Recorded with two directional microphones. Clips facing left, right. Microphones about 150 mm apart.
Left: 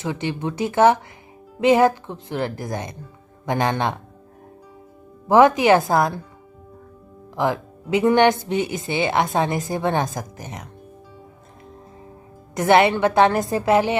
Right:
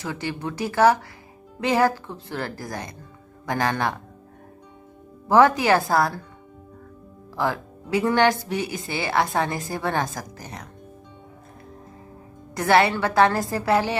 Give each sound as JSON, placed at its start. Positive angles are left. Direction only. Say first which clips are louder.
{"t": 0.0, "sound": "speech", "louder": "left 4 dB", "side_deg": 20}
{"t": 5.3, "sound": "speech", "louder": "left 3 dB", "side_deg": 20}
{"t": 7.3, "sound": "speech", "louder": "left 3 dB", "side_deg": 20}
{"t": 12.5, "sound": "speech", "louder": "left 3 dB", "side_deg": 20}